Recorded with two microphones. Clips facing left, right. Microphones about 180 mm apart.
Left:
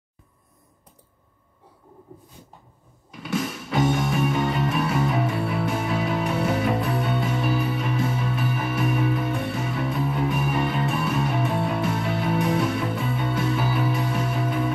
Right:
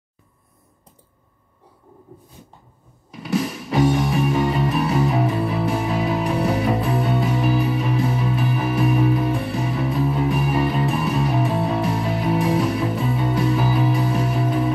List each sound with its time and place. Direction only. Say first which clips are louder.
3.3 s music: right 4 dB; 35° right (ahead or behind)